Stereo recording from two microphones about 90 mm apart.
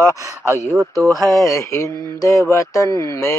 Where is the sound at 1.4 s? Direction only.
35° left (ahead or behind).